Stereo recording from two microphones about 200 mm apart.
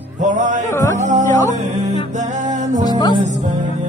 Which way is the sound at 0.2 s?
40° right (ahead or behind).